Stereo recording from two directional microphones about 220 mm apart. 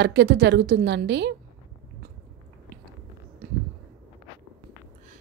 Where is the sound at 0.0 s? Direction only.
50° right (ahead or behind).